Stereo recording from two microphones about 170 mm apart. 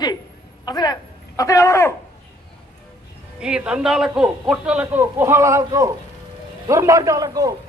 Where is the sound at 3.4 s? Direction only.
5° right (ahead or behind).